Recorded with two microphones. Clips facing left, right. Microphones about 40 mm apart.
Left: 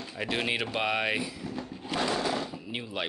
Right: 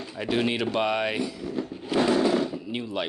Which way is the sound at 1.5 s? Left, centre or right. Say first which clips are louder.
Right 5 dB; centre.